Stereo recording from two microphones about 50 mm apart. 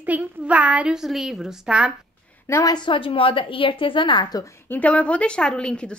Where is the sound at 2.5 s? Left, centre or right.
Left.